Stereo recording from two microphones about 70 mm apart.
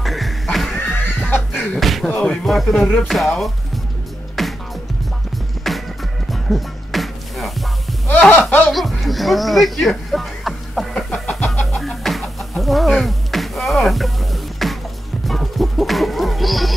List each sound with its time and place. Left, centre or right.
0.0 s music: centre
0.7 s fowl: left
1.8 s a sound: centre
2.0 s speech: centre
4.4 s music: centre
5.7 s music: centre
8.1 s a sound: left
8.6 s music: centre